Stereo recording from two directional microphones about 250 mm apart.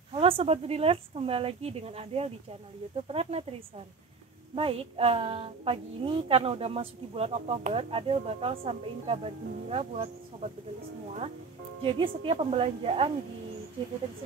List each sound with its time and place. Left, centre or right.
0.1 s speech: right
11.8 s speech: right